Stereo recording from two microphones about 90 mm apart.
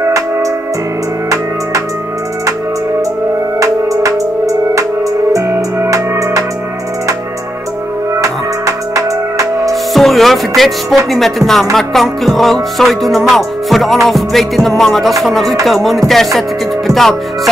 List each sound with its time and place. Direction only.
3.5 s music: 35° right (ahead or behind)
8.2 s music: 35° right (ahead or behind)
9.9 s music: centre (ahead or behind)